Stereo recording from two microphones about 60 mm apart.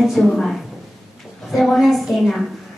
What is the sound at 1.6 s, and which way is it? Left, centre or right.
Speech, centre.